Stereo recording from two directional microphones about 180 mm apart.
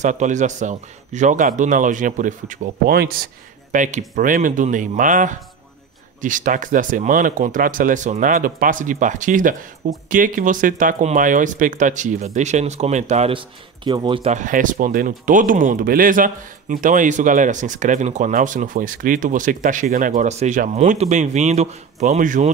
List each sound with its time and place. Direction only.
0.0 s speech: 40° right (ahead or behind)
3.7 s speech: 45° right (ahead or behind); by 14.3 s 25° right (ahead or behind)
14.3 s speech: 45° right (ahead or behind)